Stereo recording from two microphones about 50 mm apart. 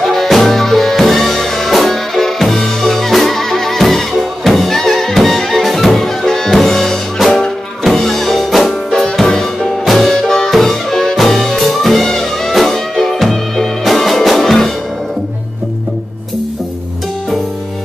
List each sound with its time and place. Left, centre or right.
0.0 s music: centre